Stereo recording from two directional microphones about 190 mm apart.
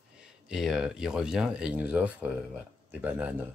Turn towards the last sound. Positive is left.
turn(degrees=-5)  # may be behind; listen again after turning